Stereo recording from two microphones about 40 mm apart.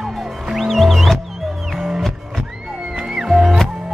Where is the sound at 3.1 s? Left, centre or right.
Centre.